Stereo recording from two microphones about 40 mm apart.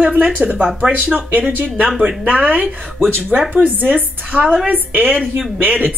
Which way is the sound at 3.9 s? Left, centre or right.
Right.